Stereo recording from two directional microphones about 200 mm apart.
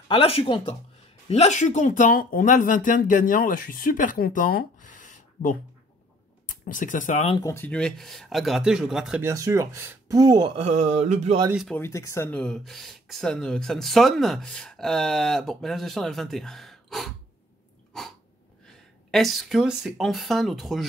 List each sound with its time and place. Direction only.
0.1 s speech: 25° left (ahead or behind)
7.3 s speech: 15° left (ahead or behind); by 9.3 s 5° right (ahead or behind)
9.3 s speech: 15° right (ahead or behind); by 11.4 s 35° right (ahead or behind)
11.5 s speech: centre (ahead or behind)
11.8 s speech: 15° left (ahead or behind)
17.9 s dog: centre (ahead or behind)
19.0 s speech: centre (ahead or behind)